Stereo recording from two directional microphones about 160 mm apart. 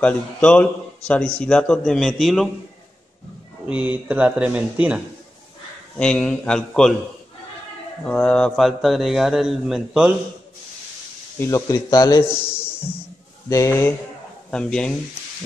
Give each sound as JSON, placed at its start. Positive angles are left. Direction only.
{"t": 0.0, "sound": "a man's voice", "side_deg": 5}
{"t": 3.6, "sound": "speech", "side_deg": -5}
{"t": 5.9, "sound": "a man's voice", "side_deg": 5}
{"t": 8.0, "sound": "a man's voice", "side_deg": 5}
{"t": 11.3, "sound": "speech", "side_deg": 20}
{"t": 13.5, "sound": "speech", "side_deg": 15}
{"t": 14.5, "sound": "a man's voice", "side_deg": 5}